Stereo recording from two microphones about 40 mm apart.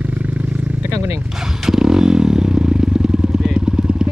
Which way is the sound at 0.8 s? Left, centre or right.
Right.